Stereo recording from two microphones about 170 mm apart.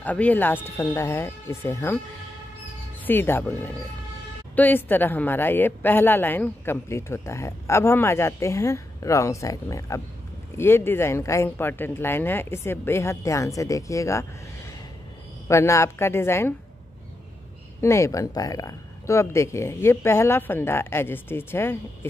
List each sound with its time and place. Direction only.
0.0 s speech: 10° left (ahead or behind)
3.1 s speech: 10° left (ahead or behind)
15.4 s speech: 15° left (ahead or behind)
17.7 s speech: 15° left (ahead or behind)